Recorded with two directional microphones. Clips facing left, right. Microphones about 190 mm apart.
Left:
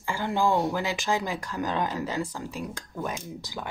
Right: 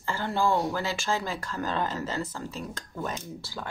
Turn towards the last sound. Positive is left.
turn(degrees=15)  # may be behind; listen again after turning